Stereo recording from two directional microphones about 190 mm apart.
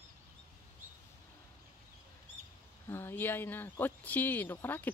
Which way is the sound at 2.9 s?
10° left (ahead or behind).